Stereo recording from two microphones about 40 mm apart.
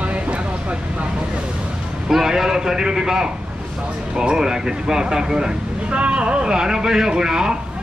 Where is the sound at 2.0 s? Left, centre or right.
Centre.